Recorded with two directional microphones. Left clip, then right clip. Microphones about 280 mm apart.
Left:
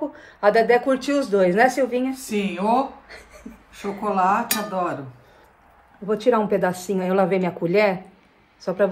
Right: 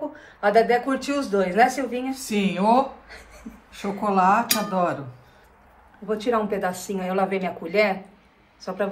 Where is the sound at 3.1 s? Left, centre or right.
Left.